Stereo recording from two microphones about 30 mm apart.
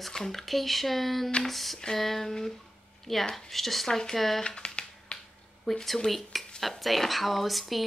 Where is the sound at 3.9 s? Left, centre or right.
Centre.